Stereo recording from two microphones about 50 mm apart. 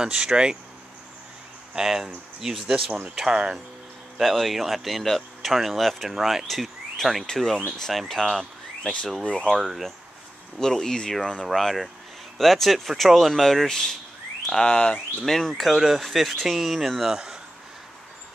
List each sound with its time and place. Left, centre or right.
0.0 s speech: centre
1.8 s speech: centre
4.2 s speech: centre
9.2 s speech: left
9.6 s speech: centre
10.6 s speech: centre
15.2 s speech: centre